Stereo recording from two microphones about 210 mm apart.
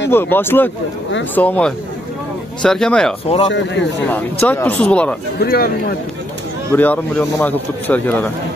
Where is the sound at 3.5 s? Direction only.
55° left (ahead or behind).